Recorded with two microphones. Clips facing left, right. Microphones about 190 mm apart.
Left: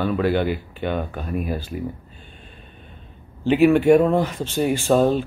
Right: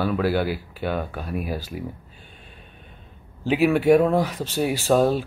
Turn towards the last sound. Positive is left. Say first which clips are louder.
# left 2 dB
turn(degrees=-5)  # may be behind; listen again after turning